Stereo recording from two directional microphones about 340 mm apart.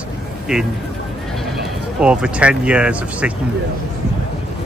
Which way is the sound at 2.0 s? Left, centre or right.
Centre.